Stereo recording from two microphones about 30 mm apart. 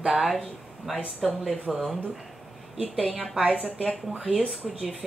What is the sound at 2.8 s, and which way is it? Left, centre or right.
Speech, right.